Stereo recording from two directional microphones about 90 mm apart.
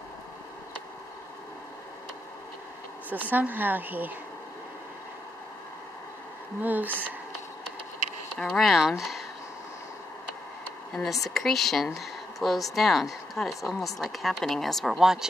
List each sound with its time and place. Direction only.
3.3 s speech: 20° right (ahead or behind)
6.6 s speech: 20° right (ahead or behind)
8.5 s speech: centre (ahead or behind)
10.9 s speech: centre (ahead or behind)